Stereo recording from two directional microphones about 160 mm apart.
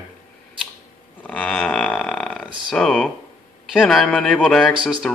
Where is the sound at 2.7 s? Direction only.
5° left (ahead or behind).